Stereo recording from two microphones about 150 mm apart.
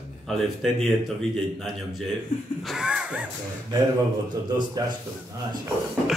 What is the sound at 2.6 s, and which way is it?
Speech, 5° right (ahead or behind).